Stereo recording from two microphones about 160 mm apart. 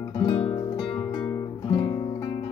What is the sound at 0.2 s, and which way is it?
Music, 30° left (ahead or behind).